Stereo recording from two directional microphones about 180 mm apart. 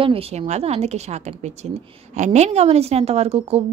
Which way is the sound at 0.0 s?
35° right (ahead or behind).